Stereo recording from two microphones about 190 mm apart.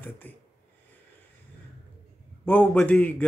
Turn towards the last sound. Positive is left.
turn(degrees=10)  # may be behind; listen again after turning